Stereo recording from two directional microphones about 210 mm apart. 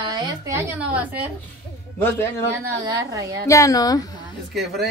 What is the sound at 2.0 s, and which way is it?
Speech, 10° left (ahead or behind).